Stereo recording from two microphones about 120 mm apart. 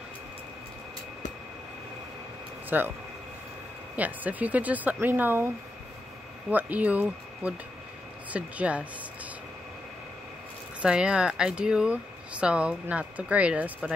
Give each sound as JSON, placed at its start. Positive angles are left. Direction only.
{"t": 2.7, "sound": "speech", "side_deg": -15}
{"t": 3.9, "sound": "speech", "side_deg": -15}
{"t": 6.5, "sound": "speech", "side_deg": -15}
{"t": 10.8, "sound": "speech", "side_deg": -10}